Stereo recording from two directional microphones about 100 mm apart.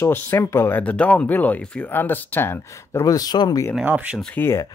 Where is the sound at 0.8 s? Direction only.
15° left (ahead or behind); by 3.6 s 40° left (ahead or behind).